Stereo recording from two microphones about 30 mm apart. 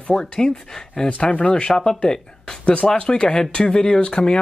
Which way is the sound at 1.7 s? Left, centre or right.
Left.